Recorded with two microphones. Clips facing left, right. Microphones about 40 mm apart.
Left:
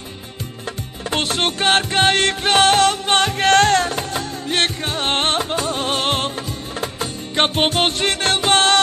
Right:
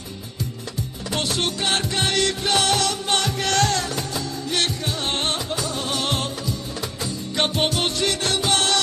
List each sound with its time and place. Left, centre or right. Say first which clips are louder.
1.1 s music: left 4 dB; left